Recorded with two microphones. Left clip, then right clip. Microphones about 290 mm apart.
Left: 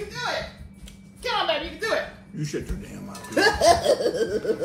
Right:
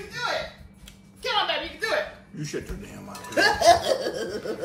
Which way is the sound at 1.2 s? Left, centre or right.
Left.